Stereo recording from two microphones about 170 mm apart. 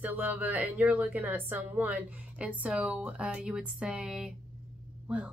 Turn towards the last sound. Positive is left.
turn(degrees=-5)  # may be behind; listen again after turning